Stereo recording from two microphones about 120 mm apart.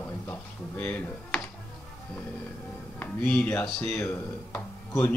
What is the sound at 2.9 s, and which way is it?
Speech, 15° left (ahead or behind).